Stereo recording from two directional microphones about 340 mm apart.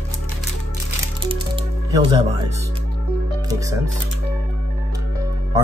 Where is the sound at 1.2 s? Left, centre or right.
Centre.